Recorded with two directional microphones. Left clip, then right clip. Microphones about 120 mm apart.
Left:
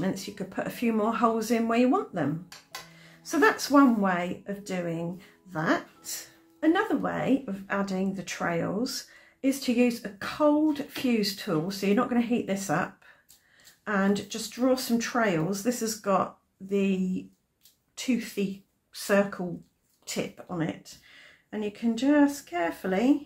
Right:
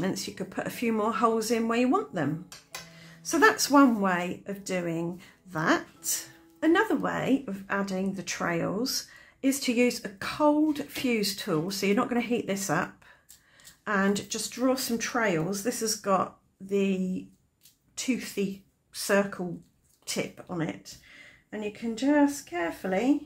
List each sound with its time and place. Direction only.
0.0 s speech: 40° right (ahead or behind)
3.0 s speech: 40° right (ahead or behind); by 23.1 s centre (ahead or behind)